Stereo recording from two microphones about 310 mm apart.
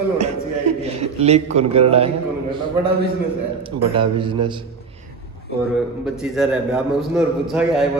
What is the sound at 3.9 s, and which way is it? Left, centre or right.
Speech, centre.